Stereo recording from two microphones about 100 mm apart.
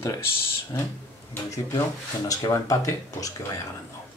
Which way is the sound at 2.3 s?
35° left (ahead or behind).